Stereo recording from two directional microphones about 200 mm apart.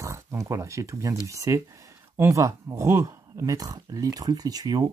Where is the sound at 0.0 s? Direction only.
15° right (ahead or behind).